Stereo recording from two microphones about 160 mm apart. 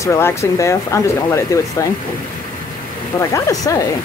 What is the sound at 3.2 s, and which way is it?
Speech, 20° left (ahead or behind).